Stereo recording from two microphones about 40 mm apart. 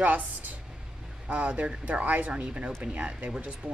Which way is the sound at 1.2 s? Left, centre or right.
Right.